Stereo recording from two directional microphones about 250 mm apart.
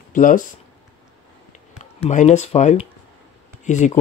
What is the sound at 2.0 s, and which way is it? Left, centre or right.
Speech, left.